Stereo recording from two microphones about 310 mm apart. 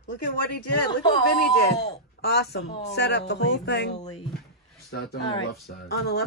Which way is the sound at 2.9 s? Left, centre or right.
Left.